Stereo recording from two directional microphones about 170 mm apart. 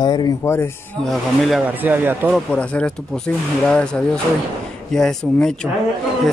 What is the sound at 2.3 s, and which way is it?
Speech, 5° left (ahead or behind).